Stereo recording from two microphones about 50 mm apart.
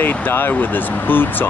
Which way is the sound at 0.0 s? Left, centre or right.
Left.